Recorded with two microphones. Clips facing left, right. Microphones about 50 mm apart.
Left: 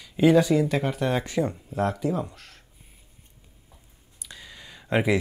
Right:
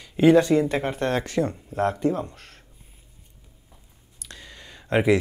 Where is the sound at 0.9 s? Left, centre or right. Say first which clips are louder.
Right 1 dB; centre.